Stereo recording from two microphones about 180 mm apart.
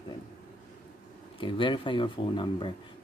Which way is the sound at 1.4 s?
25° left (ahead or behind).